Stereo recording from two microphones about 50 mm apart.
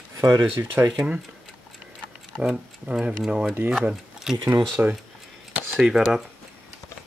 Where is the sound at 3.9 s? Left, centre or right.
Centre.